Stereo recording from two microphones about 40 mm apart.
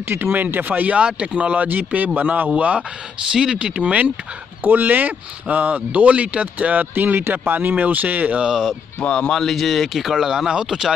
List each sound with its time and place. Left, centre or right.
0.1 s speech: right
0.9 s speech: right
2.5 s speech: right
3.3 s speech: centre
4.6 s speech: right
7.5 s speech: right
8.4 s speech: centre
9.0 s speech: left
9.3 s speech: centre
9.6 s speech: centre